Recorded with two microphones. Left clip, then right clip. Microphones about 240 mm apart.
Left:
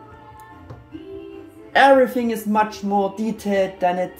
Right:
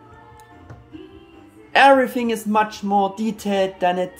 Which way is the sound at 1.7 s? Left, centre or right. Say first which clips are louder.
Even; centre.